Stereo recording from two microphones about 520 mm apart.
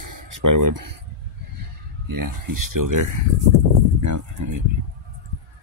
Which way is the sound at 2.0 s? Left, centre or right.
Right.